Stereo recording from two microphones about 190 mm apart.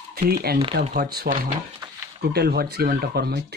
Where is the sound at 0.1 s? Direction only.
55° right (ahead or behind).